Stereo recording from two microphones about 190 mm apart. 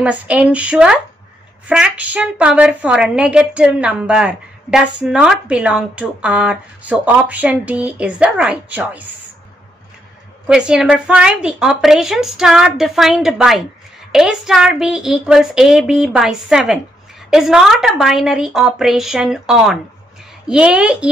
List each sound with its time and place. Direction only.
0.0 s a woman's voice: 5° right (ahead or behind)
10.4 s a woman's voice: 5° right (ahead or behind)